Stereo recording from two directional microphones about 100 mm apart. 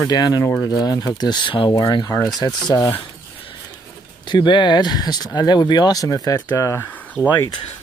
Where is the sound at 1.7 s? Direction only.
45° left (ahead or behind).